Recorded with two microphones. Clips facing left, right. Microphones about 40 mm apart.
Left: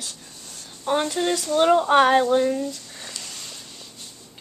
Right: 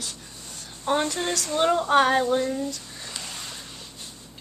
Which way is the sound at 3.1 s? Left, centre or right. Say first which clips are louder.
Right 4 dB; centre.